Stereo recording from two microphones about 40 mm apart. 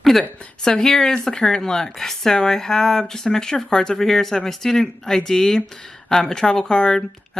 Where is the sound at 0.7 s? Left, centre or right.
Centre.